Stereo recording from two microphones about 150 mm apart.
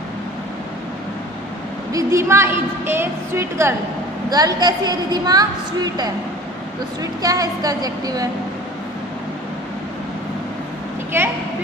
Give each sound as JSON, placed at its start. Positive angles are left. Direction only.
{"t": 1.9, "sound": "a woman's voice", "side_deg": -20}
{"t": 11.1, "sound": "a woman's voice", "side_deg": -15}